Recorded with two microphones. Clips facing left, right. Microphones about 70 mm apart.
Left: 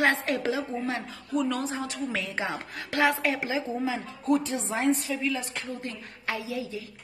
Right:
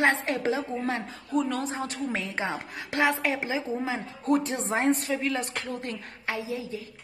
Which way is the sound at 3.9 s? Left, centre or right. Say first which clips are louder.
Right 1 dB; right.